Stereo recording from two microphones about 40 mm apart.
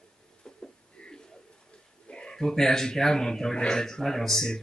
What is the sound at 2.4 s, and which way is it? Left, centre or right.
Speech, centre.